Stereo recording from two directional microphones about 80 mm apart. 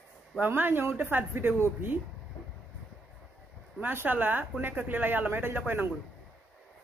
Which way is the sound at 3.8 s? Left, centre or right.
Right.